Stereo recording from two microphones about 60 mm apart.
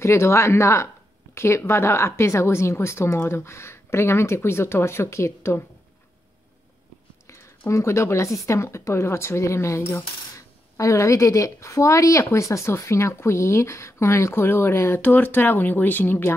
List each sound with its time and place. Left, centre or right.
0.0 s speech: left
7.2 s speech: left
10.8 s speech: left